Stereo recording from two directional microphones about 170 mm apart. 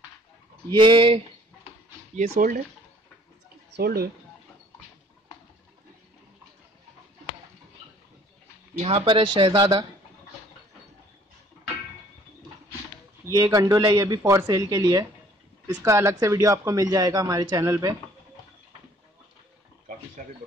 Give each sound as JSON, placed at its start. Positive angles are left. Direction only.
{"t": 0.7, "sound": "speech", "side_deg": -30}
{"t": 2.3, "sound": "speech", "side_deg": -55}
{"t": 3.7, "sound": "speech", "side_deg": -65}
{"t": 8.7, "sound": "speech", "side_deg": -35}
{"t": 13.3, "sound": "a man's voice", "side_deg": -20}